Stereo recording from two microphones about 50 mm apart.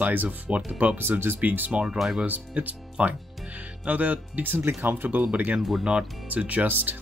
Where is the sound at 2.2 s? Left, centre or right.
Right.